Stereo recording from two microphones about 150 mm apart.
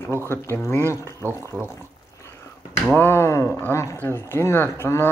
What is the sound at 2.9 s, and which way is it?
Speech, 15° left (ahead or behind).